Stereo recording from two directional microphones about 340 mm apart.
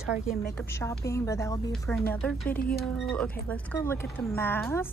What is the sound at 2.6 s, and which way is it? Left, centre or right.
Speech, left.